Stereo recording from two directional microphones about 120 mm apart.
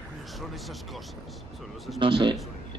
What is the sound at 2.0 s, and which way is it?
Speech, 45° right (ahead or behind).